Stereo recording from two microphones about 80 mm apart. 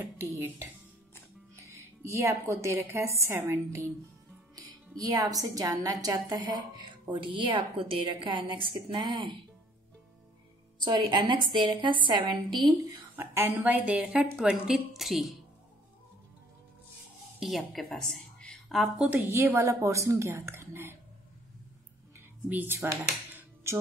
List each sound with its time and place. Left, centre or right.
1.5 s speech: right
4.6 s a woman's voice: right
8.6 s a woman's voice: right
10.8 s a woman's voice: right
13.1 s a woman's voice: right
13.7 s speech: centre
14.7 s a woman's voice: centre
17.4 s a woman's voice: centre
19.2 s a woman's voice: right
22.5 s a woman's voice: right
23.6 s music: right